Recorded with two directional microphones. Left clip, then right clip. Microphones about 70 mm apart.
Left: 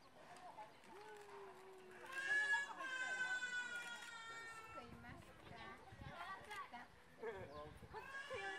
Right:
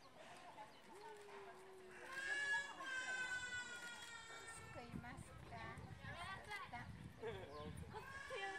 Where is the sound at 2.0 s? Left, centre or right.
Left.